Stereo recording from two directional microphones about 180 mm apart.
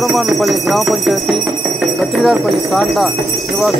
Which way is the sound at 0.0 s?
Centre (ahead or behind).